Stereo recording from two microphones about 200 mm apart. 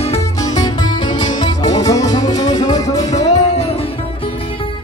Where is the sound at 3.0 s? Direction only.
35° left (ahead or behind).